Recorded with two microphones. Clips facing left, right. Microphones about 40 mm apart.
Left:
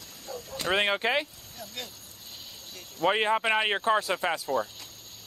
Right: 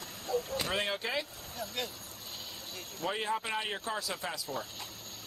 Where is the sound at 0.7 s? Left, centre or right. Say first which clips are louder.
Left 8 dB; left.